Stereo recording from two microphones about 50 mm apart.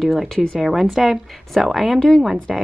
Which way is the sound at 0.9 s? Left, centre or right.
Centre.